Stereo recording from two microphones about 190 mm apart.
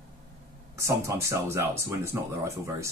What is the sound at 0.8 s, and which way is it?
Speech, 15° right (ahead or behind).